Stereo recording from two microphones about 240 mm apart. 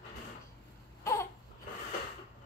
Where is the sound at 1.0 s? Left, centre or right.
Centre.